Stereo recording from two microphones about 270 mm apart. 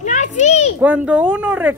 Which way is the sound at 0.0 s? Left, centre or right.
Left.